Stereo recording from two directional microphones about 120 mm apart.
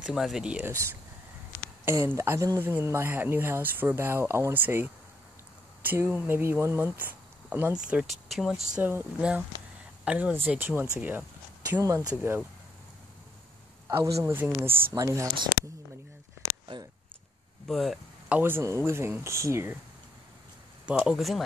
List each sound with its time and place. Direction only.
0.0 s speech: centre (ahead or behind)
1.9 s speech: 20° right (ahead or behind); by 8.5 s centre (ahead or behind)
8.7 s speech: 10° right (ahead or behind)
11.8 s speech: 30° right (ahead or behind)
12.2 s speech: 15° right (ahead or behind)
13.8 s a man's voice: 25° right (ahead or behind)
17.6 s speech: centre (ahead or behind)
18.3 s speech: 20° right (ahead or behind)
21.0 s speech: centre (ahead or behind)